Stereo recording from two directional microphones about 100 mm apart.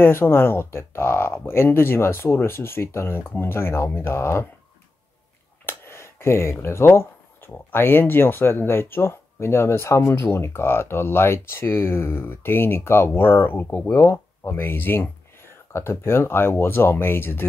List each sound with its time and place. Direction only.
0.0 s speech: 25° left (ahead or behind)
5.7 s speech: 25° left (ahead or behind)